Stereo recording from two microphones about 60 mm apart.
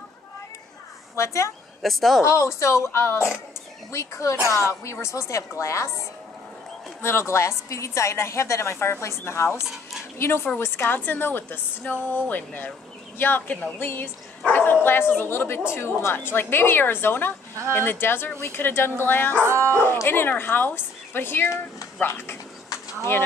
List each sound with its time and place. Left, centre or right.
1.1 s a woman's voice: left
1.8 s speech: centre
2.2 s a woman's voice: left
7.0 s a woman's voice: left
19.4 s speech: right
19.7 s a woman's voice: left